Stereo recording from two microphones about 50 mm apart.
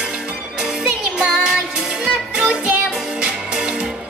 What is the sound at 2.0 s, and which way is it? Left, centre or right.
Music, centre.